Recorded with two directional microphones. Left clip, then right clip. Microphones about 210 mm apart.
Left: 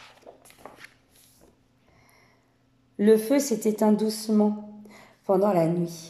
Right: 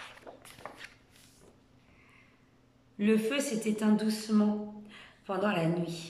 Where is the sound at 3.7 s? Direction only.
30° left (ahead or behind).